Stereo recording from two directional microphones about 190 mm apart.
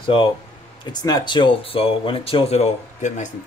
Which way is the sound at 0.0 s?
25° left (ahead or behind).